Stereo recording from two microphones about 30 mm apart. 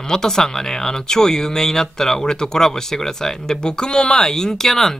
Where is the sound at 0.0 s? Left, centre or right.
Centre.